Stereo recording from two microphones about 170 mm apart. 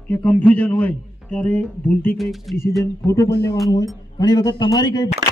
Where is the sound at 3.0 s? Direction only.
20° left (ahead or behind).